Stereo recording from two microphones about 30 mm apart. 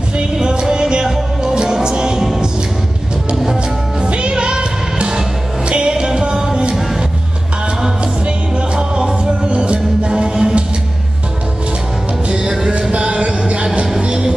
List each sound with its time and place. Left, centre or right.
0.4 s music: right
4.0 s music: right
5.7 s music: right
6.7 s music: centre
8.0 s music: right
12.3 s music: right